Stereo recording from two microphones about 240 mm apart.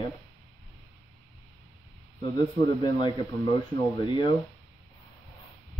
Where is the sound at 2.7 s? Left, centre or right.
Centre.